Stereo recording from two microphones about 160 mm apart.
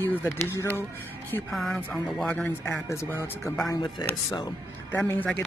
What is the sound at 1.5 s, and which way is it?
Speech, centre (ahead or behind).